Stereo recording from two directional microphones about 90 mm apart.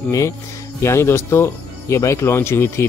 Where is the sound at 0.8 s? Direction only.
30° left (ahead or behind).